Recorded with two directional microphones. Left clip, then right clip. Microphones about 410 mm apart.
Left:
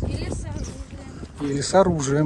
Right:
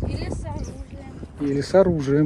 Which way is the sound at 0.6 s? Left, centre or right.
Centre.